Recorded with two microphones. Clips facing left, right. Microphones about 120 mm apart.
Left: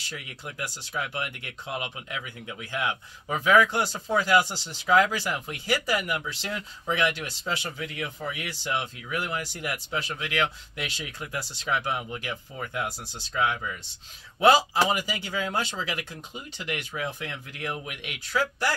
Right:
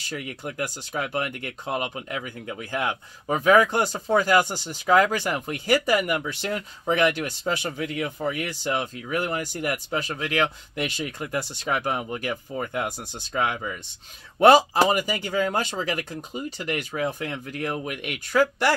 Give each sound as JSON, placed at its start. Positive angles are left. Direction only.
{"t": 0.1, "sound": "speech", "side_deg": -50}
{"t": 14.4, "sound": "speech", "side_deg": -55}